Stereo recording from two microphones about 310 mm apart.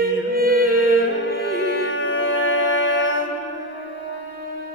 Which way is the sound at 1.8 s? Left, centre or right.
Left.